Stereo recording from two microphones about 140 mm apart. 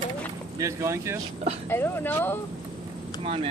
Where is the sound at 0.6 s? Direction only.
20° right (ahead or behind).